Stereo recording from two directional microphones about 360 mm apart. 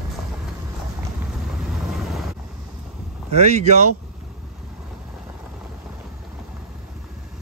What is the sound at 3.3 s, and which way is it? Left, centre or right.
Speech, centre.